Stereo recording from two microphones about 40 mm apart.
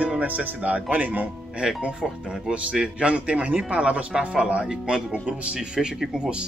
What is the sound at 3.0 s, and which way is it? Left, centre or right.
Speech, right.